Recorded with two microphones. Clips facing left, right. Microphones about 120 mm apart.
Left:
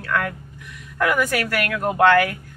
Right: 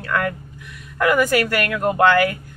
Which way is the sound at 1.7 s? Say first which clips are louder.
Even; 15° right (ahead or behind).